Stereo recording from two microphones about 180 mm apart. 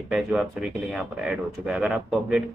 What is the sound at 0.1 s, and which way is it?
Speech, centre (ahead or behind).